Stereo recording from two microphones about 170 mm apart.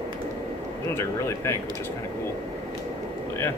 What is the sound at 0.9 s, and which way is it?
Speech, 15° left (ahead or behind).